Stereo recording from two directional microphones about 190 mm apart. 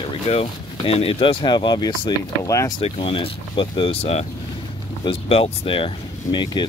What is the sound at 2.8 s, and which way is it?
Speech, 30° left (ahead or behind).